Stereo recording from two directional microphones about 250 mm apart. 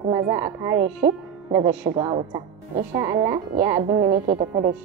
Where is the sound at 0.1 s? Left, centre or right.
Centre.